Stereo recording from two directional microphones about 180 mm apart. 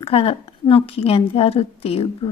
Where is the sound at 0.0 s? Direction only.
30° left (ahead or behind).